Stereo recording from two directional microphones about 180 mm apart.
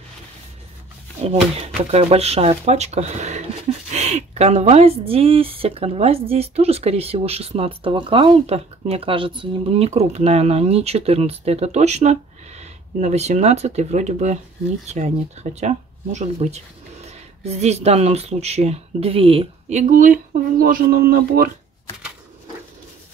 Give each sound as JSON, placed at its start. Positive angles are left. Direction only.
{"t": 1.2, "sound": "speech", "side_deg": -35}